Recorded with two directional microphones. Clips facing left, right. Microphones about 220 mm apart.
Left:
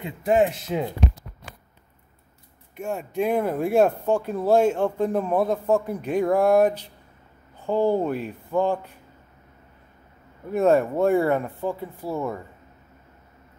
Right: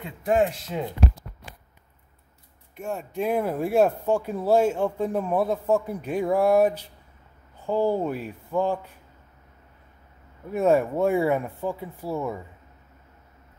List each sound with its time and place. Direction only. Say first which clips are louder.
0.0 s speech: left 2 dB; 5° left (ahead or behind)
2.7 s speech: left 2 dB; centre (ahead or behind)
10.5 s speech: left 2 dB; 10° right (ahead or behind)